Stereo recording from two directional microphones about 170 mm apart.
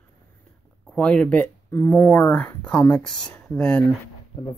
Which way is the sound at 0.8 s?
5° left (ahead or behind).